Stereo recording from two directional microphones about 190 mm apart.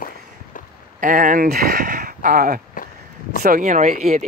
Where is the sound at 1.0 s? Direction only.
45° right (ahead or behind).